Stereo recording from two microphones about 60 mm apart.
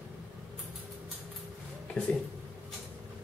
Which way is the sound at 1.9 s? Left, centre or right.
Centre.